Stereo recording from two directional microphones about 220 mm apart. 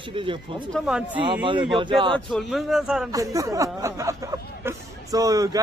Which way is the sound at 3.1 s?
15° right (ahead or behind).